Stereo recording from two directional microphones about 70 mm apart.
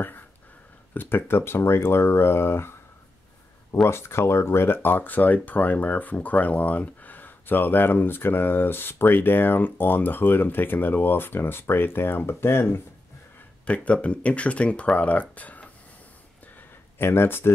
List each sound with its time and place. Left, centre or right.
0.9 s speech: left
3.8 s speech: left
13.8 s speech: centre
17.0 s speech: left